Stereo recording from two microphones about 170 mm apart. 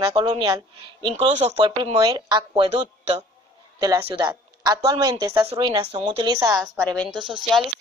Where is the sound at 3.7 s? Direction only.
20° right (ahead or behind); by 6.1 s 40° right (ahead or behind).